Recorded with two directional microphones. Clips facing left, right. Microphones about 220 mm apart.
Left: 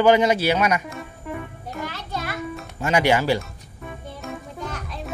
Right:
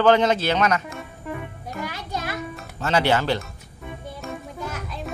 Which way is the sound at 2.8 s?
10° left (ahead or behind).